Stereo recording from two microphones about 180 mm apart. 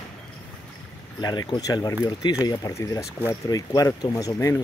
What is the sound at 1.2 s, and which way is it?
Speech, 25° left (ahead or behind).